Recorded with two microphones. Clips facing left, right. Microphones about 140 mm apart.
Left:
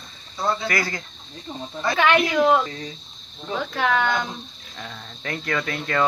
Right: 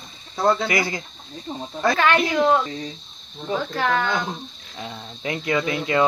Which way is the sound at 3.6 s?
5° left (ahead or behind).